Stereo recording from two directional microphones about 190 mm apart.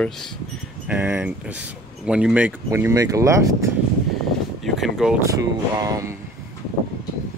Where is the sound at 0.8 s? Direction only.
10° right (ahead or behind).